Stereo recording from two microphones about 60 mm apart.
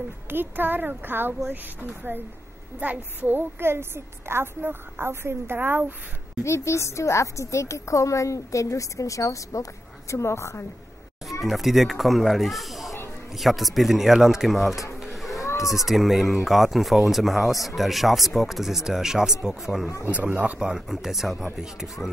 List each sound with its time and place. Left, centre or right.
0.3 s a woman's voice: right
6.4 s a woman's voice: left
11.4 s speech: centre
15.0 s a sound: centre
15.4 s baby cry: left
15.7 s speech: centre
20.1 s speech: right
20.5 s speech: centre